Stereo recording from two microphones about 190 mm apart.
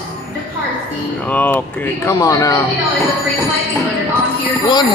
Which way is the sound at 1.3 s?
10° left (ahead or behind).